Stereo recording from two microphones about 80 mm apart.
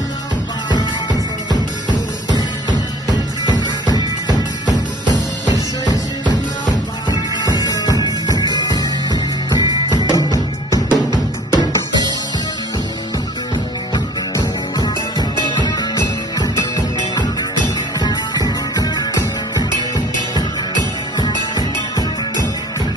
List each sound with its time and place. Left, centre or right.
1.5 s music: right
5.0 s music: right
7.6 s music: left
9.8 s music: right
13.9 s music: left
16.3 s music: left